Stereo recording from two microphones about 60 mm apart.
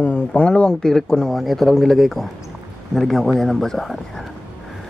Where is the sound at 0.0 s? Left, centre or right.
Left; by 4.3 s centre.